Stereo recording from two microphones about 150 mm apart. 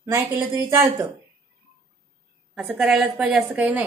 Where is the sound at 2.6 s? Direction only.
5° right (ahead or behind).